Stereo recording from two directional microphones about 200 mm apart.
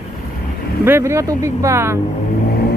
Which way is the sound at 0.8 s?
15° right (ahead or behind).